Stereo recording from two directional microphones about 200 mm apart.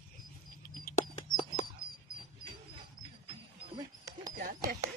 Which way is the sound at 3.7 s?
15° right (ahead or behind).